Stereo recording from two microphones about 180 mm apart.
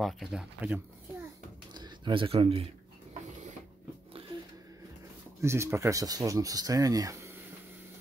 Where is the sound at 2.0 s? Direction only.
30° right (ahead or behind).